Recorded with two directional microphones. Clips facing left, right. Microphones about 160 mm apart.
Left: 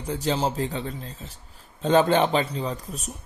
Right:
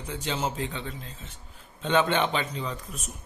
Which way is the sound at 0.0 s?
35° left (ahead or behind).